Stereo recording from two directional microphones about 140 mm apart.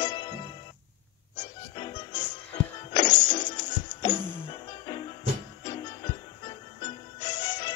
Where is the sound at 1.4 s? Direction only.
30° left (ahead or behind).